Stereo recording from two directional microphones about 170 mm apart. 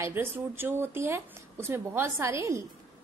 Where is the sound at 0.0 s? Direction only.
15° right (ahead or behind).